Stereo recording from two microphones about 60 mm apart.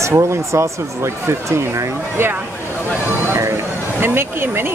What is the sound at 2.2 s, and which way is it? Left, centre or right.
Speech, right.